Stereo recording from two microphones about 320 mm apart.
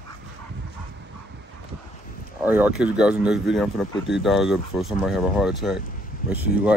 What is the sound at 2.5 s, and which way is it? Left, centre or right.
Speech, centre.